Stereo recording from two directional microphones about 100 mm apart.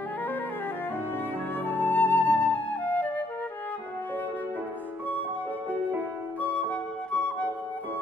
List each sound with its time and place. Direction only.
1.7 s flute: 20° left (ahead or behind)
6.4 s flute: 15° left (ahead or behind)